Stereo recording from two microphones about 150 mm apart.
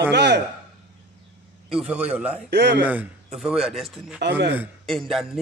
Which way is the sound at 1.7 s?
5° right (ahead or behind).